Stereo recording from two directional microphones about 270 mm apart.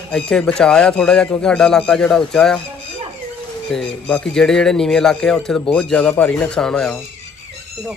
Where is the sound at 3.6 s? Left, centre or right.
Centre.